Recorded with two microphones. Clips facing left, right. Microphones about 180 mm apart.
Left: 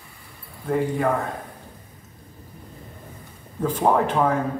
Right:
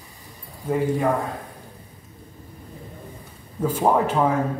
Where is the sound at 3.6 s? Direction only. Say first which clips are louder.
Even; 10° right (ahead or behind).